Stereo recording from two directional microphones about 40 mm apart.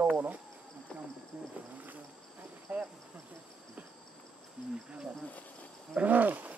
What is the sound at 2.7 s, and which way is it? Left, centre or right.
Speech, right.